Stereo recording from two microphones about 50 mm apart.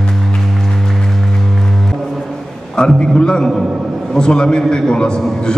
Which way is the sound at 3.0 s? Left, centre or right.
Centre.